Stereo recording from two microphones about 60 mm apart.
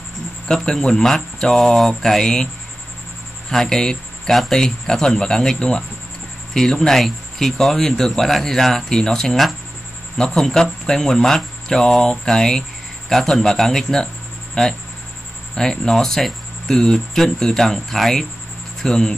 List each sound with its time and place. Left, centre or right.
0.5 s speech: centre